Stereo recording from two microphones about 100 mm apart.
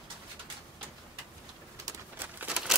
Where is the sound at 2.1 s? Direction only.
20° right (ahead or behind).